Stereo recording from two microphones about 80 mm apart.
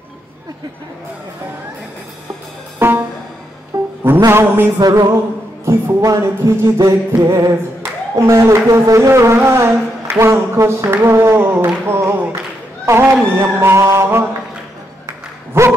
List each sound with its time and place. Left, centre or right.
2.8 s music: right
3.7 s music: right
4.3 s speech: right
4.7 s music: right
5.7 s speech: right
11.1 s a sound: right
12.8 s speech: right
15.5 s speech: right